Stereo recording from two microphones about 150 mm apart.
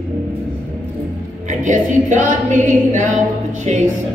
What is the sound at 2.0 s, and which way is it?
A capella, 60° right (ahead or behind).